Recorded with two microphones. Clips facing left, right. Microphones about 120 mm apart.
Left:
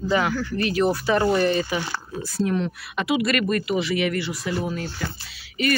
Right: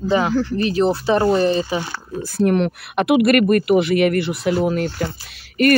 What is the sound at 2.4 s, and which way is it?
Speech, 65° right (ahead or behind).